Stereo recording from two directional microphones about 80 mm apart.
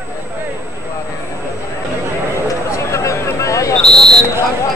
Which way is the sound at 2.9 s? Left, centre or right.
Left.